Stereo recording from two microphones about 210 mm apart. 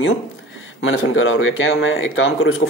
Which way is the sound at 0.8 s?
70° left (ahead or behind).